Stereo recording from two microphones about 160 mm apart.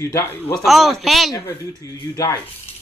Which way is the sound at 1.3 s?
15° left (ahead or behind).